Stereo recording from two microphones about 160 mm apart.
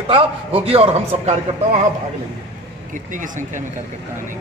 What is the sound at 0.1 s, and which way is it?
A man's voice, 35° right (ahead or behind).